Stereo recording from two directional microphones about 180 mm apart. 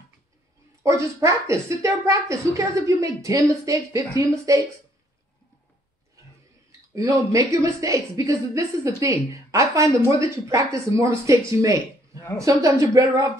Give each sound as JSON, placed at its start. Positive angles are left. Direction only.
{"t": 0.8, "sound": "a woman's voice", "side_deg": -15}
{"t": 7.0, "sound": "a woman's voice", "side_deg": -15}